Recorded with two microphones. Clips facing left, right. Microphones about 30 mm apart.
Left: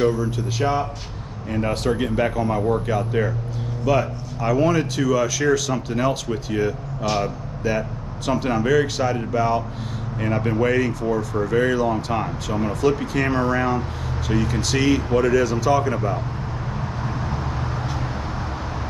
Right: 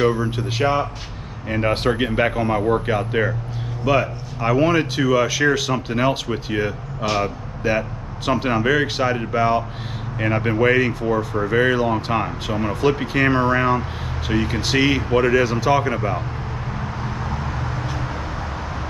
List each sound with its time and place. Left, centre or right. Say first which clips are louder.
0.0 s speech: right 1 dB; right